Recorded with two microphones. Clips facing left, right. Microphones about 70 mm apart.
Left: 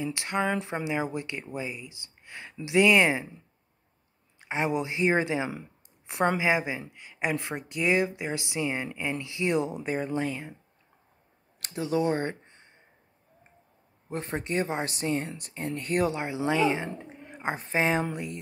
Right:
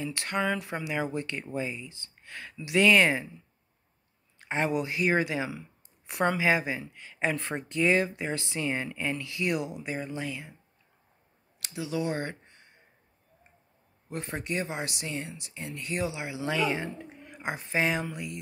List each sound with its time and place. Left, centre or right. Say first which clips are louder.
0.0 s speech: left 1 dB; centre
4.4 s speech: even; centre
9.8 s speech: left 5 dB; left
11.6 s speech: left 5 dB; left
14.0 s speech: left 2 dB; left
16.4 s speech: left 3 dB; left